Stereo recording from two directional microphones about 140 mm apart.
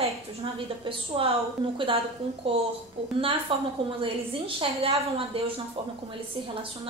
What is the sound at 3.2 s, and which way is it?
A woman's voice, 40° right (ahead or behind).